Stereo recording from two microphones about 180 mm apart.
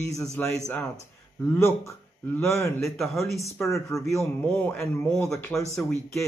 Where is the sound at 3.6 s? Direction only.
15° left (ahead or behind).